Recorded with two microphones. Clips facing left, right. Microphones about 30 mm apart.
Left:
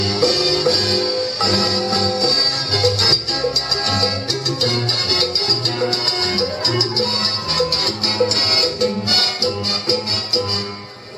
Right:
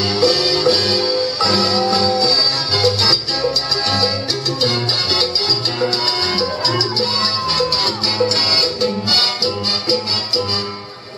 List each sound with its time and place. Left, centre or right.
0.0 s music: centre
6.3 s music: centre